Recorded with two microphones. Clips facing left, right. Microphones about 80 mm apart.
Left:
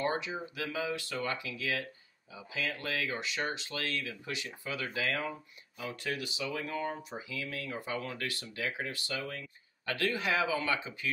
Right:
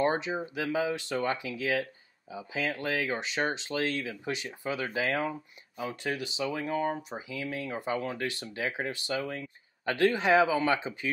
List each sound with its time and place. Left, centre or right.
0.0 s speech: right